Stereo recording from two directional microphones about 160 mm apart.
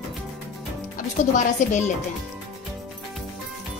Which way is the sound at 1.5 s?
50° left (ahead or behind).